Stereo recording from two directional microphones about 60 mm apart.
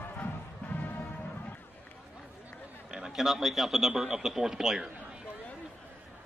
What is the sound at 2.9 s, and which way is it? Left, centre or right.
A man's voice, centre.